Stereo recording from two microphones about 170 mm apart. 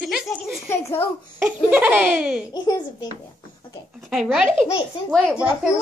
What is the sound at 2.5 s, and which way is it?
Speech, 25° left (ahead or behind).